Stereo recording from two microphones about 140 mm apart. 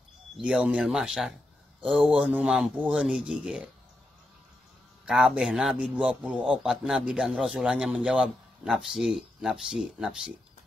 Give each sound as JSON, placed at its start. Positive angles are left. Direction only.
{"t": 0.4, "sound": "a man's voice", "side_deg": -5}
{"t": 5.0, "sound": "a man's voice", "side_deg": -5}